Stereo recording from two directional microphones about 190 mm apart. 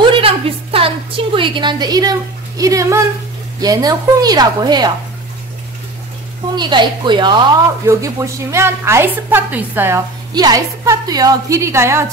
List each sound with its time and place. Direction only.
0.1 s a woman's voice: 30° right (ahead or behind)
6.5 s a woman's voice: 25° right (ahead or behind)